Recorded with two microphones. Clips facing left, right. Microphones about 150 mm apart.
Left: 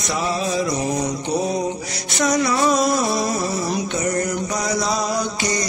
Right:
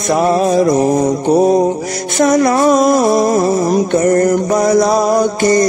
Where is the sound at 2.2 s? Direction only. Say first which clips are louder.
Right 8 dB; 50° right (ahead or behind).